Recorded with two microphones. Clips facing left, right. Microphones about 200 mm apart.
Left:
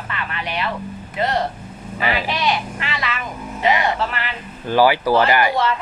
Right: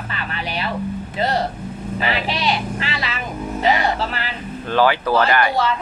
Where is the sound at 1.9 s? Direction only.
30° right (ahead or behind).